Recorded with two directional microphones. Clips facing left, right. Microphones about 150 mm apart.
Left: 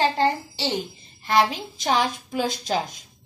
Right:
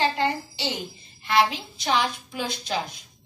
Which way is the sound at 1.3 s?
45° left (ahead or behind).